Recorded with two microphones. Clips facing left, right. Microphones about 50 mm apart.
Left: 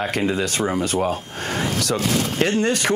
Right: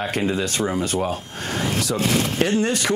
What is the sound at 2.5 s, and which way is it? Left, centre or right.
Speech, left.